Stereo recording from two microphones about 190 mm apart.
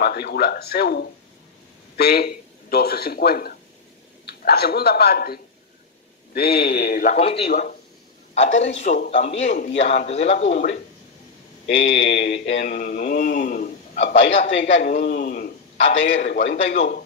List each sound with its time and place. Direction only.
0.0 s speech: 55° left (ahead or behind)
7.1 s speech: 30° left (ahead or behind)
11.8 s speech: 35° left (ahead or behind)
12.5 s a man's voice: 45° left (ahead or behind)